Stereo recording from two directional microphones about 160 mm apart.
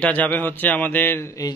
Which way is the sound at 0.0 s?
10° left (ahead or behind).